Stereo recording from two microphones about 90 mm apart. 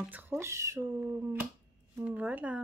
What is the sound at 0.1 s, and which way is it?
Speech, 25° right (ahead or behind).